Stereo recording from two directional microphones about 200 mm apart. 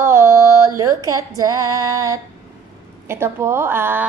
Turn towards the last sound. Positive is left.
turn(degrees=-10)  # may be behind; listen again after turning